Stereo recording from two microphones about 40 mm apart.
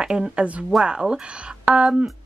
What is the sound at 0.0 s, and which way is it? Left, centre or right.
Speech, right.